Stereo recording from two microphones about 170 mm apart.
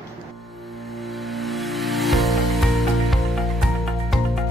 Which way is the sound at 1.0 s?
Centre (ahead or behind).